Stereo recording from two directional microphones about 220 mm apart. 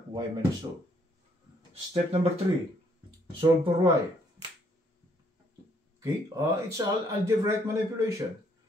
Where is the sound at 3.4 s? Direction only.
25° right (ahead or behind).